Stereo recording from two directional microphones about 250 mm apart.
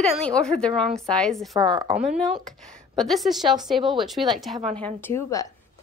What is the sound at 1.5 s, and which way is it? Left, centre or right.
Speech, centre.